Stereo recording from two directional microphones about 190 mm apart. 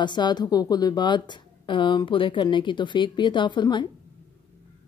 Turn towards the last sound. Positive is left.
turn(degrees=25)  # may be behind; listen again after turning